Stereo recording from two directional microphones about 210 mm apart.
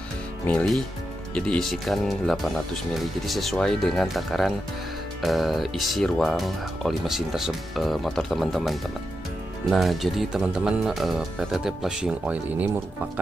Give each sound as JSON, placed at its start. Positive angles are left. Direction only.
{"t": 0.5, "sound": "speech", "side_deg": 5}